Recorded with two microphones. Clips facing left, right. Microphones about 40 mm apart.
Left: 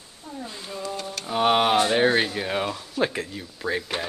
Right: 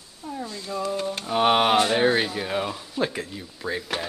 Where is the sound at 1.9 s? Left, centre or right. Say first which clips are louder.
Left 1 dB; centre.